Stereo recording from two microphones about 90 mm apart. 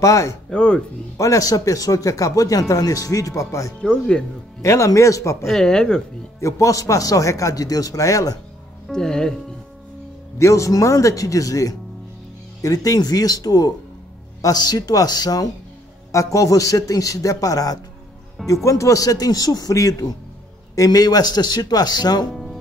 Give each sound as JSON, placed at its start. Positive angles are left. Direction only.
{"t": 0.0, "sound": "a man's voice", "side_deg": 35}
{"t": 0.5, "sound": "speech", "side_deg": 10}
{"t": 1.1, "sound": "a man's voice", "side_deg": 35}
{"t": 3.8, "sound": "speech", "side_deg": 10}
{"t": 4.6, "sound": "a man's voice", "side_deg": 35}
{"t": 5.4, "sound": "speech", "side_deg": 5}
{"t": 6.4, "sound": "a man's voice", "side_deg": 35}
{"t": 8.8, "sound": "speech", "side_deg": 5}
{"t": 10.4, "sound": "a man's voice", "side_deg": 35}
{"t": 22.3, "sound": "music", "side_deg": 0}